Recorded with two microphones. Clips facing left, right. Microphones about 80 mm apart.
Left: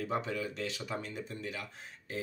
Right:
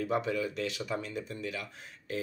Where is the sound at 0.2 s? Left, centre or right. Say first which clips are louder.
Right 4 dB; left.